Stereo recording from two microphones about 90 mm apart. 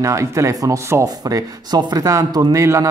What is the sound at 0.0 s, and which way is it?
Speech, 35° right (ahead or behind).